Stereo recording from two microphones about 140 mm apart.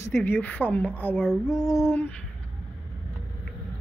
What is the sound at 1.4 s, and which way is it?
Female singing, 25° left (ahead or behind).